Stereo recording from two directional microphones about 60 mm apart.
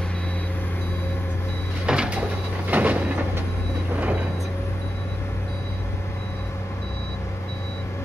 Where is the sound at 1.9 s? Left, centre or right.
Centre.